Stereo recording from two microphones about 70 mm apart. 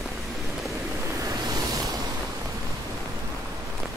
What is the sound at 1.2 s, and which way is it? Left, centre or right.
Vehicle, right.